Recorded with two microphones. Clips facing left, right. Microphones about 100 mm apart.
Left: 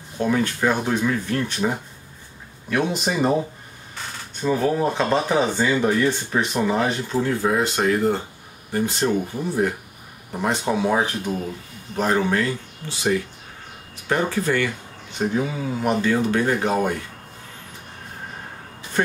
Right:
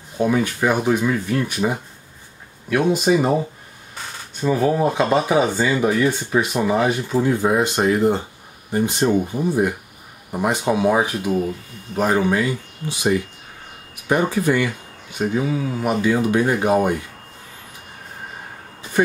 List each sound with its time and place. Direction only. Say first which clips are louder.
0.2 s speech: right 2 dB; 10° right (ahead or behind)
4.4 s speech: right 2 dB; 5° right (ahead or behind)